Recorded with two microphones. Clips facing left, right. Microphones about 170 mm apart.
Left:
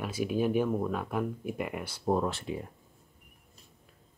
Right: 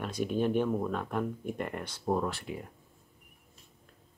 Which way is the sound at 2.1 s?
20° left (ahead or behind).